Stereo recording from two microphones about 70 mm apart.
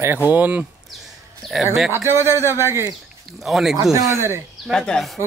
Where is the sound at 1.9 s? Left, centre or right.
Right.